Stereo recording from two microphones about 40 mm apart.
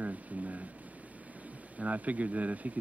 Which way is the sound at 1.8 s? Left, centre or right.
Right.